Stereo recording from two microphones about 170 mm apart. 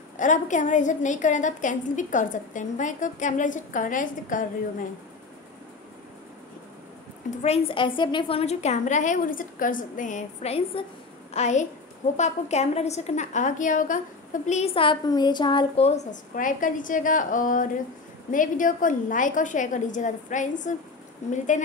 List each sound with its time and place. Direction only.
0.2 s a woman's voice: 45° left (ahead or behind)
7.4 s a woman's voice: 35° left (ahead or behind)